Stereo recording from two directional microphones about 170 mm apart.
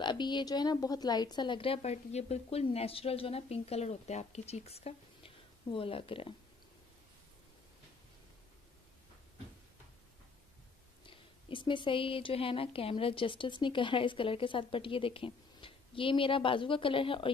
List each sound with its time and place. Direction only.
0.0 s a woman's voice: 25° left (ahead or behind)
11.1 s a woman's voice: 30° left (ahead or behind)